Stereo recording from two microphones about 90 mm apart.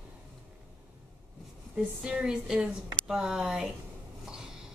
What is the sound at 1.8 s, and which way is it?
Speech, 10° right (ahead or behind).